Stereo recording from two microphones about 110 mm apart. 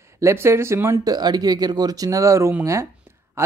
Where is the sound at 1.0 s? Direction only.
40° right (ahead or behind).